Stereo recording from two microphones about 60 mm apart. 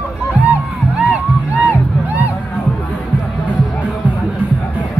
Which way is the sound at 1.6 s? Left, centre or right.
Right.